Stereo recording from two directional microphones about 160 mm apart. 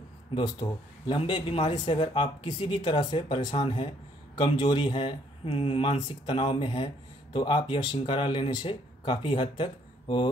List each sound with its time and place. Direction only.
0.3 s speech: 30° left (ahead or behind)